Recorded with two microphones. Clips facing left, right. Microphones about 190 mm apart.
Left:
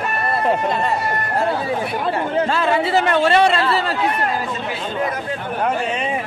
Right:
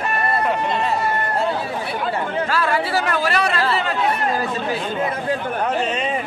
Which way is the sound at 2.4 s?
25° left (ahead or behind).